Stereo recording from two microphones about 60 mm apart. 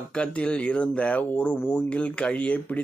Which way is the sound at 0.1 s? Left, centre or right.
Centre.